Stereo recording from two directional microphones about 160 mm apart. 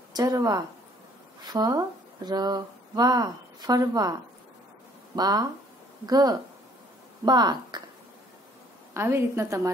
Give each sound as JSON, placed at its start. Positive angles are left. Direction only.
{"t": 0.1, "sound": "speech", "side_deg": -25}
{"t": 8.9, "sound": "a woman's voice", "side_deg": -15}